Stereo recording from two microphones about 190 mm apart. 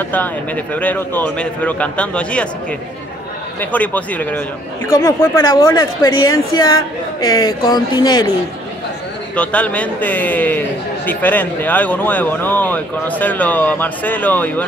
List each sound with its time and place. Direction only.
0.0 s speech: 10° left (ahead or behind)
3.7 s speech: 10° left (ahead or behind)
9.3 s speech: 5° left (ahead or behind)